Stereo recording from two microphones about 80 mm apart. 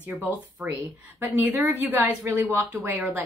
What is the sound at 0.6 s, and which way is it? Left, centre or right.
Speech, centre.